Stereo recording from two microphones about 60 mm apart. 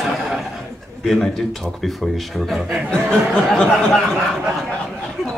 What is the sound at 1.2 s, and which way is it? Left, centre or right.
Speech, centre.